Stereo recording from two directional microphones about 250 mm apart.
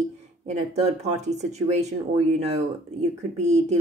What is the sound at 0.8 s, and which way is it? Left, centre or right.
Speech, right.